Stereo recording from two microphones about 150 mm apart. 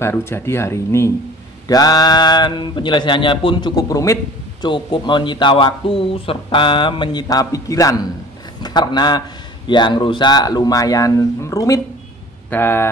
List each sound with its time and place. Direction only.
0.0 s a man's voice: 15° left (ahead or behind)